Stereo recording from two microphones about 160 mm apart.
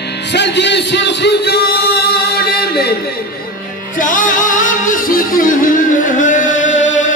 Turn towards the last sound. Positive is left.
turn(degrees=50)  # may be behind; listen again after turning